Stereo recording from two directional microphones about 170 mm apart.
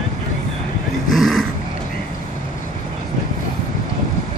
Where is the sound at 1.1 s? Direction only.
Centre (ahead or behind).